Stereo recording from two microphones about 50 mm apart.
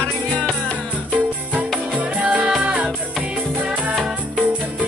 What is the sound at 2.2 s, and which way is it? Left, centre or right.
Music, right.